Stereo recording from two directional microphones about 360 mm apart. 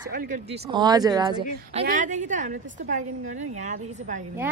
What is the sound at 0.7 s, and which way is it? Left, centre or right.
A woman's voice, centre.